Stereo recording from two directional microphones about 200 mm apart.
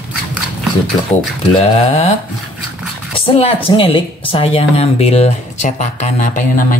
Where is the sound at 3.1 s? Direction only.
30° left (ahead or behind).